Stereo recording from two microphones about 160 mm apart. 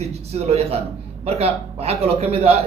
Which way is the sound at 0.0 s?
40° right (ahead or behind).